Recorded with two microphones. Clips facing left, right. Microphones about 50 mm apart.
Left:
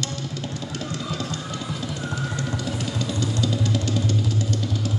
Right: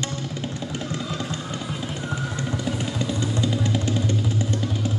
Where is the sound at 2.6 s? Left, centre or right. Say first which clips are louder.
Right 1 dB; centre.